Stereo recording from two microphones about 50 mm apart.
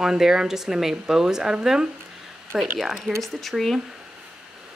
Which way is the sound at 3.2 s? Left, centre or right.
Centre.